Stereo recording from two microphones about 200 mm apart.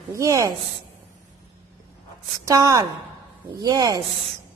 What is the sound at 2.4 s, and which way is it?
A woman's voice, 15° right (ahead or behind).